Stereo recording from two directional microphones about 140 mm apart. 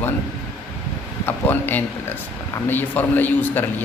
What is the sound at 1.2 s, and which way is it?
A man's voice, 15° left (ahead or behind).